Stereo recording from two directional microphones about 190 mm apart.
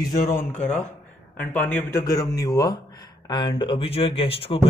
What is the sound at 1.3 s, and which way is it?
Speech, 10° left (ahead or behind).